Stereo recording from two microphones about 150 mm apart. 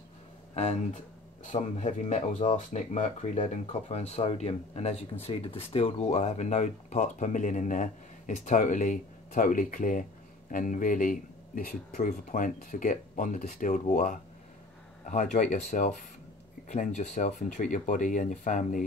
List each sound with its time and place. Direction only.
0.6 s speech: 45° left (ahead or behind)